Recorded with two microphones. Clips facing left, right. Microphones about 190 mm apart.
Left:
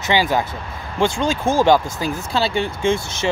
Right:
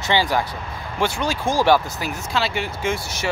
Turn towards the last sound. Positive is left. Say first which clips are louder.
# left 5 dB
turn(degrees=25)  # may be behind; listen again after turning